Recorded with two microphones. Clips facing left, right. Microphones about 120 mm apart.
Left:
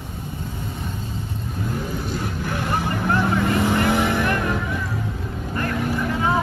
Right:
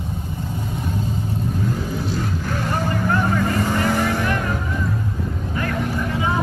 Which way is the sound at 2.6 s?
15° left (ahead or behind).